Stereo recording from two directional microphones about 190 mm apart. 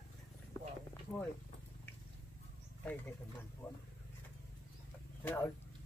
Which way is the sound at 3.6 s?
10° left (ahead or behind).